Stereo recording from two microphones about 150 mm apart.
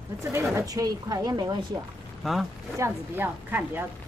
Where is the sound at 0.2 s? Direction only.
15° right (ahead or behind).